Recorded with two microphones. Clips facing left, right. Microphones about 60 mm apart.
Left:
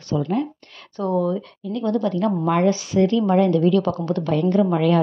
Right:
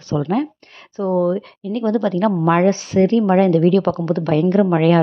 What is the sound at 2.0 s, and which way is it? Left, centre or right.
Speech, right.